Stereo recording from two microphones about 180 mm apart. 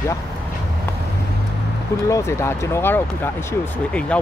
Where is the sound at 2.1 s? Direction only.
15° left (ahead or behind).